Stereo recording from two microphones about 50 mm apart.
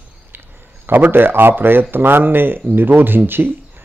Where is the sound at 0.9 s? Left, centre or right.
Right.